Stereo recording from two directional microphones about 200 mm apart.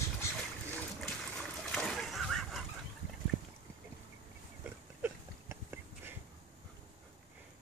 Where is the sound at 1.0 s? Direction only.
5° left (ahead or behind).